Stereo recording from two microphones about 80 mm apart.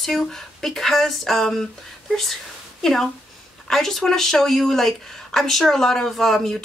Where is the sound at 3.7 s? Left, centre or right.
Centre.